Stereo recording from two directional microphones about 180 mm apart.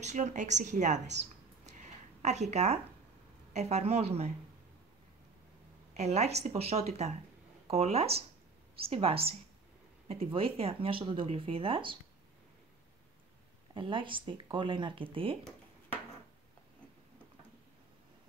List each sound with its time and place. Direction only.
0.0 s speech: 40° right (ahead or behind)
2.2 s speech: 40° right (ahead or behind)
5.9 s speech: 35° right (ahead or behind)
13.7 s speech: 30° right (ahead or behind)